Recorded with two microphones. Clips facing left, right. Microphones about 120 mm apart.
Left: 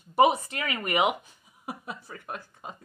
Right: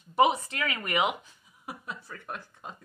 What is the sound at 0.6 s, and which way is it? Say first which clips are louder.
Speech: left 3 dB; 20° left (ahead or behind).